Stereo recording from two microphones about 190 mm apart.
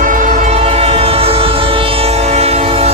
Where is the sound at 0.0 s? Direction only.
45° right (ahead or behind).